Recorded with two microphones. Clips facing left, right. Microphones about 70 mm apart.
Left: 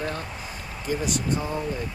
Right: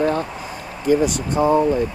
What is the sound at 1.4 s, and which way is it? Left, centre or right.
Speech, right.